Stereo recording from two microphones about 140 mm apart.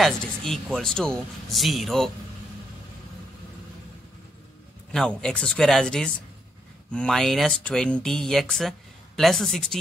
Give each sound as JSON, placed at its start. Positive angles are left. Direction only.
{"t": 0.0, "sound": "speech", "side_deg": 5}
{"t": 4.9, "sound": "speech", "side_deg": 5}